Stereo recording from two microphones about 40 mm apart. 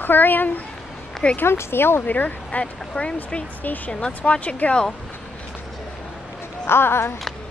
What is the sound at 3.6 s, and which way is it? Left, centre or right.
Speech, left.